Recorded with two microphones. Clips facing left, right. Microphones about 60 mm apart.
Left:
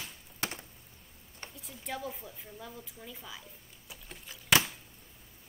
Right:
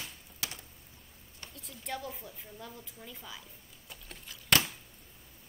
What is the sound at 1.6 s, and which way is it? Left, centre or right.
Speech, centre.